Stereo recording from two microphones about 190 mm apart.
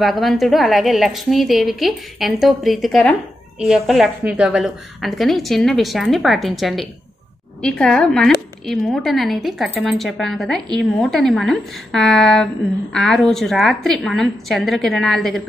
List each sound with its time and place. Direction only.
0.0 s speech: centre (ahead or behind)